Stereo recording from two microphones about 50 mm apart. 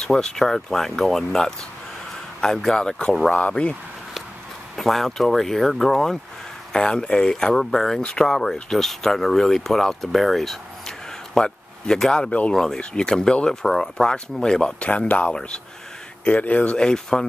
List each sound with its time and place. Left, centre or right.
0.0 s speech: centre
4.7 s speech: centre
8.0 s speech: centre
8.3 s speech: centre
12.3 s speech: left
12.5 s speech: centre
14.8 s speech: left
16.3 s speech: left
16.7 s speech: centre